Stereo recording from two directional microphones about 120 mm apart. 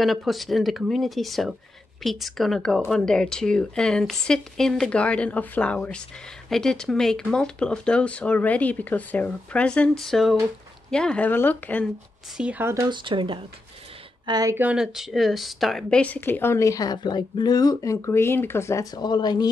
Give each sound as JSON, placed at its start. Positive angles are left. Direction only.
{"t": 0.0, "sound": "speech", "side_deg": 0}
{"t": 12.4, "sound": "speech", "side_deg": -10}
{"t": 12.6, "sound": "speech", "side_deg": -25}
{"t": 12.9, "sound": "speech", "side_deg": -45}
{"t": 14.5, "sound": "speech", "side_deg": -15}
{"t": 14.8, "sound": "speech", "side_deg": -5}